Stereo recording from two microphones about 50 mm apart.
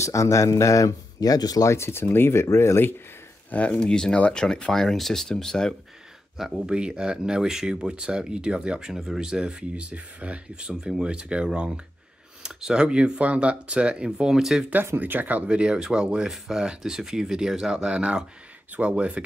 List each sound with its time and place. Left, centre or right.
0.0 s speech: left
1.9 s speech: left
2.4 s speech: left
3.5 s speech: left
6.3 s speech: centre
6.7 s speech: centre
15.0 s speech: right